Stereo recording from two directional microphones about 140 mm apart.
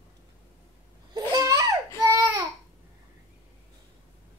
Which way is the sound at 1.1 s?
25° right (ahead or behind).